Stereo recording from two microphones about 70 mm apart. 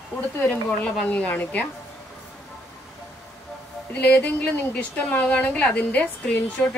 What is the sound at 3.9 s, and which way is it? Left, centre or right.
A woman's voice, left.